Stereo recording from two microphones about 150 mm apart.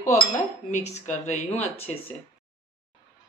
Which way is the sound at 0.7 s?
50° left (ahead or behind).